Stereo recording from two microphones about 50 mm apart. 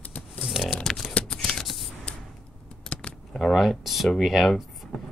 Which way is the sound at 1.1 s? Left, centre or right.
Centre.